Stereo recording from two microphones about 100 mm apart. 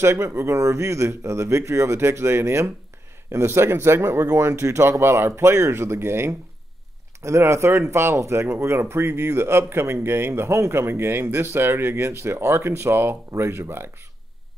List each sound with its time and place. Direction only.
0.0 s speech: 25° right (ahead or behind)